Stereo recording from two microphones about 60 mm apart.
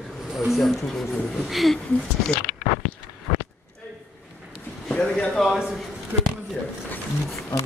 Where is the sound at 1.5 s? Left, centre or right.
Centre.